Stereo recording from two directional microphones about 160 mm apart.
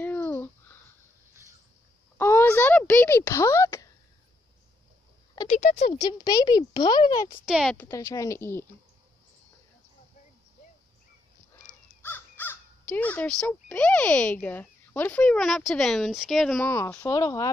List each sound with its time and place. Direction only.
0.0 s a sound: 10° left (ahead or behind)
2.1 s a sound: 15° left (ahead or behind)
5.5 s speech: 50° left (ahead or behind)
6.0 s speech: 25° left (ahead or behind)
7.4 s speech: 5° right (ahead or behind)
7.7 s speech: 15° left (ahead or behind)
12.0 s speech: 15° left (ahead or behind)
16.5 s speech: 15° left (ahead or behind)